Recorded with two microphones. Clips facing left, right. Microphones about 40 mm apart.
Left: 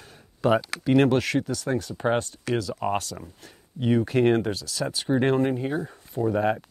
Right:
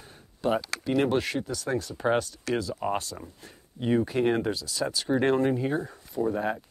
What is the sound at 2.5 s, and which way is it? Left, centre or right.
Speech, centre.